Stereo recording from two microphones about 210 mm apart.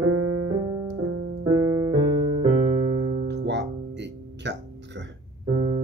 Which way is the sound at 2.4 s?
25° right (ahead or behind).